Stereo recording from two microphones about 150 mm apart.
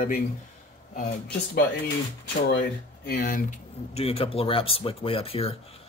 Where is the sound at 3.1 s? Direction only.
75° left (ahead or behind).